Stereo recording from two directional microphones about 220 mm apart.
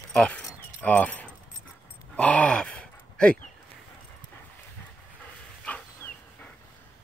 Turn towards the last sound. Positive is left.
turn(degrees=5)  # may be behind; listen again after turning